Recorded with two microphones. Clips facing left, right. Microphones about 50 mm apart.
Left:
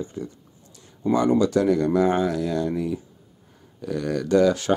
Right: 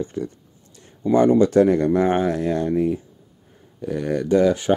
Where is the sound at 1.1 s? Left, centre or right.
Centre.